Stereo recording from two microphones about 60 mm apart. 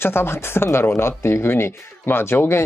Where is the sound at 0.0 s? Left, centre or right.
Left.